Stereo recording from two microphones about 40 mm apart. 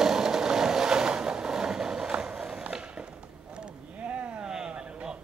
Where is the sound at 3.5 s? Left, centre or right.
Right.